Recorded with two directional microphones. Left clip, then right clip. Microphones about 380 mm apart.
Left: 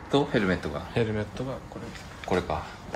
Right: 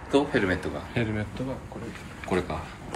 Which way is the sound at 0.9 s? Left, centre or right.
Centre.